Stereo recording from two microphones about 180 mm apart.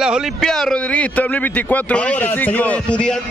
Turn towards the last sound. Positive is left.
turn(degrees=5)  # may be behind; listen again after turning